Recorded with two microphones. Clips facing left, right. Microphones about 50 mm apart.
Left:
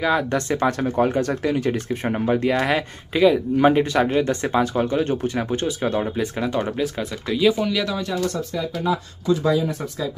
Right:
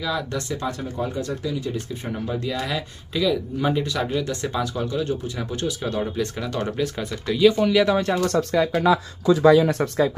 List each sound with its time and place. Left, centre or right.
0.0 s speech: left
0.6 s speech: left
6.8 s speech: centre
7.9 s speech: right
8.3 s speech: right
8.8 s speech: right